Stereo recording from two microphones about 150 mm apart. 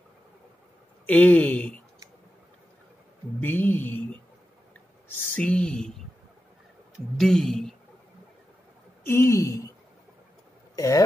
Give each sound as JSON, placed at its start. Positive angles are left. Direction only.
{"t": 1.0, "sound": "speech", "side_deg": 10}
{"t": 3.3, "sound": "speech", "side_deg": 10}
{"t": 7.2, "sound": "speech", "side_deg": 0}
{"t": 9.0, "sound": "a woman's voice", "side_deg": 15}